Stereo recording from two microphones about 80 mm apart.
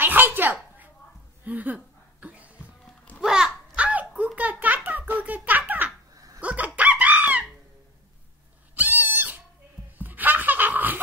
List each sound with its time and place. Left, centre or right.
0.0 s a sound: right
3.2 s babbling: centre
4.4 s a sound: centre
6.4 s chicken: centre
8.7 s cat: right
9.9 s laughter: right